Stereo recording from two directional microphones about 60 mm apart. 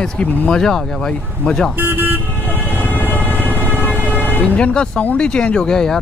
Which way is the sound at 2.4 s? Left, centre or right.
Left.